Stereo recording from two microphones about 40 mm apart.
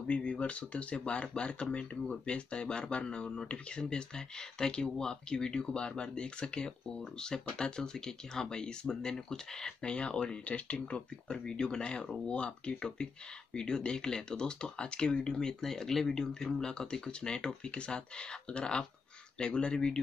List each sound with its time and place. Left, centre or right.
0.0 s speech: left
11.2 s speech: left